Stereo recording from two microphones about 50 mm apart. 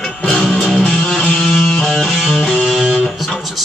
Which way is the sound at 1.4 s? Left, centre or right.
Centre.